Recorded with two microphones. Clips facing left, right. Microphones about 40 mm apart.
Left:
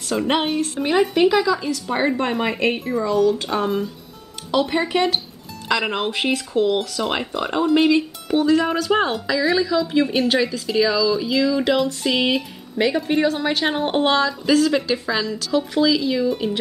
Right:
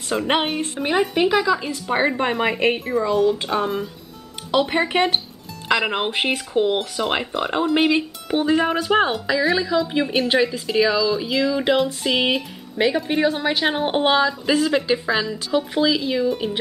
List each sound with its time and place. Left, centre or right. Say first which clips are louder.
0.1 s speech: left 1 dB; centre
0.7 s speech: left 2 dB; centre
2.3 s speech: right 1 dB; centre
3.1 s speech: left 1 dB; centre
3.4 s speech: left 1 dB; centre
4.5 s speech: even; right
5.7 s speech: right 1 dB; centre
5.9 s speech: even; right